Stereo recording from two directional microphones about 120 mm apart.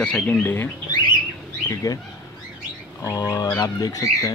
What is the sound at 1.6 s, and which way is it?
Speech, 30° left (ahead or behind).